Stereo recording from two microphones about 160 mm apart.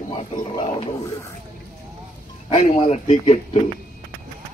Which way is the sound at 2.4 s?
40° left (ahead or behind).